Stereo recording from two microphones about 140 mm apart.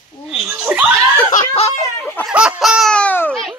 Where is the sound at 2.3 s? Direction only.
5° right (ahead or behind).